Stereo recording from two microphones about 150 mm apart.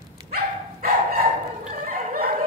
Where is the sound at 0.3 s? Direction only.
75° right (ahead or behind).